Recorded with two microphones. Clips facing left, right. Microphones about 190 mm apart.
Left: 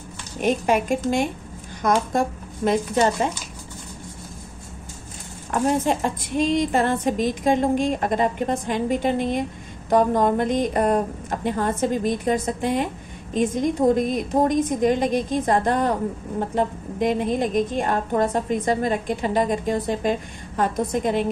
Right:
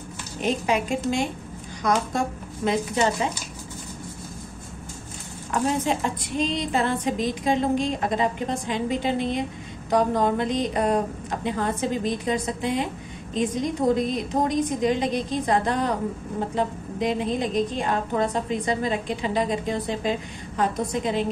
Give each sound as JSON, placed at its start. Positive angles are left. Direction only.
{"t": 0.4, "sound": "a woman's voice", "side_deg": 50}
{"t": 5.5, "sound": "a woman's voice", "side_deg": 50}